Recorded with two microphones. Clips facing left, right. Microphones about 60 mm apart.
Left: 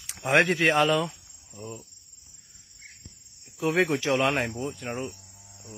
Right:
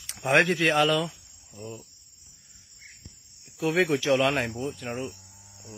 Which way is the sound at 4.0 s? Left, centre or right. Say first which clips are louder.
Right 1 dB; left.